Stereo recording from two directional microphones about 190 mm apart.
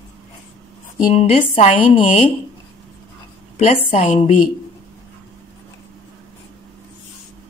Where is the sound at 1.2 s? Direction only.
35° left (ahead or behind).